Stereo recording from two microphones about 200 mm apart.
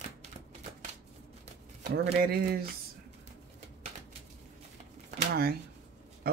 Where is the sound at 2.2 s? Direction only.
50° right (ahead or behind).